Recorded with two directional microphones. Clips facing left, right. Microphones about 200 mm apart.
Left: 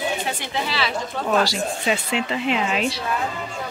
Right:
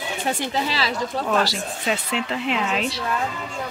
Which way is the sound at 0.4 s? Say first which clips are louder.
Right 2 dB; 35° right (ahead or behind).